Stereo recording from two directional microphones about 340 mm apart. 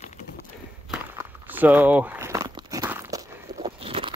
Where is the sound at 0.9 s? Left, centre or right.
Centre.